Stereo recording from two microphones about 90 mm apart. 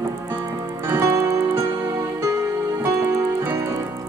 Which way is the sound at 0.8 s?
35° right (ahead or behind).